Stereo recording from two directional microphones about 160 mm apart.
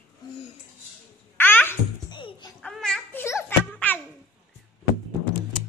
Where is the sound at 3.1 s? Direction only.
15° left (ahead or behind).